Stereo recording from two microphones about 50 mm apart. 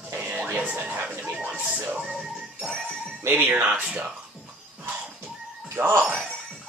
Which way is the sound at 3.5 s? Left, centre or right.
Right.